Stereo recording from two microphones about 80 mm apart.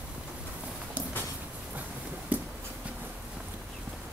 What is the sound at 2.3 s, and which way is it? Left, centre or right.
Writing, right.